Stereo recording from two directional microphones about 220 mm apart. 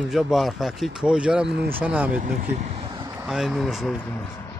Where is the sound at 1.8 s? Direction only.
5° right (ahead or behind).